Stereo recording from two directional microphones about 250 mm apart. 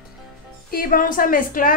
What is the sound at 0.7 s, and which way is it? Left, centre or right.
Speech, left.